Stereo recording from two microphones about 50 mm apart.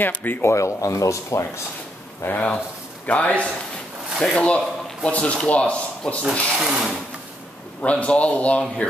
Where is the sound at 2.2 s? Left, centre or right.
Left.